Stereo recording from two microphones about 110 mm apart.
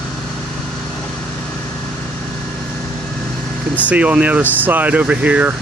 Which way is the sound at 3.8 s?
10° right (ahead or behind).